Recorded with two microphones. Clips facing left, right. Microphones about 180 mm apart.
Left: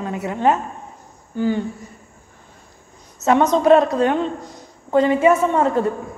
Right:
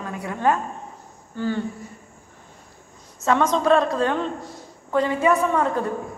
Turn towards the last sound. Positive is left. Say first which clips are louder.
# left 4 dB
turn(degrees=25)  # may be behind; listen again after turning